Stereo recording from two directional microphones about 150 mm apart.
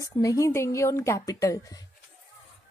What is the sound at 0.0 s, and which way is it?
A woman's voice, 20° left (ahead or behind).